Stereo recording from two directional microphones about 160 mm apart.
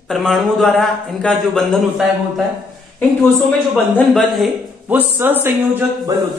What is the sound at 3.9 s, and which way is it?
Speech, centre (ahead or behind).